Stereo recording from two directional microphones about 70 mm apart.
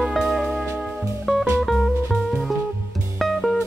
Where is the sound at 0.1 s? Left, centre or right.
Centre.